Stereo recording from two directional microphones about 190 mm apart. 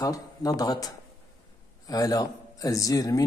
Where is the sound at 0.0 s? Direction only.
20° left (ahead or behind).